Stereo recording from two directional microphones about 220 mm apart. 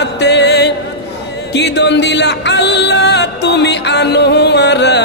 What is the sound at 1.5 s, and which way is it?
A man's voice, 50° left (ahead or behind).